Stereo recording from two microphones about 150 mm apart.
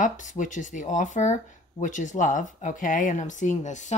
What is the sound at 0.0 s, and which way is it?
Speech, 55° left (ahead or behind).